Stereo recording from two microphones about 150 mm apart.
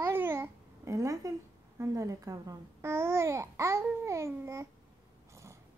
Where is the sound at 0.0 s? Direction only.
15° right (ahead or behind).